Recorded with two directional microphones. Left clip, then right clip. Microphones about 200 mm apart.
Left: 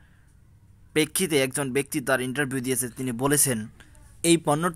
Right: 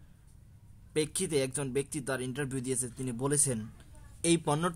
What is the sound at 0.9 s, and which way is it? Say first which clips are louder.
Speech: left 7 dB; 15° left (ahead or behind).